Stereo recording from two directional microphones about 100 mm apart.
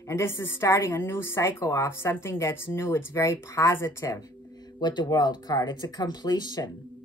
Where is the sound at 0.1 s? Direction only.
25° left (ahead or behind).